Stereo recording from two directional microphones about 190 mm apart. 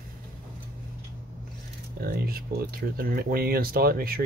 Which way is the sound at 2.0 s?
50° right (ahead or behind).